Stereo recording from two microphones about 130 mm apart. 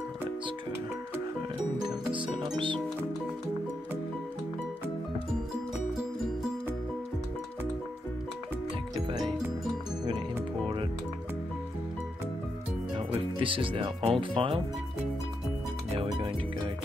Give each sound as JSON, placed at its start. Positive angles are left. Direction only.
{"t": 2.0, "sound": "music", "side_deg": -40}
{"t": 13.4, "sound": "speech", "side_deg": -40}
{"t": 16.0, "sound": "music", "side_deg": -45}